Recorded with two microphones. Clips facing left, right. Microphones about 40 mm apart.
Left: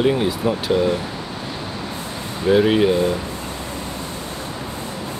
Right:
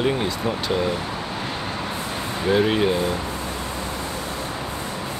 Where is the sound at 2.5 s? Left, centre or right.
Centre.